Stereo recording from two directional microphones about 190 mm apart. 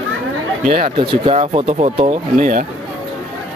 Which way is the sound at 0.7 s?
40° right (ahead or behind).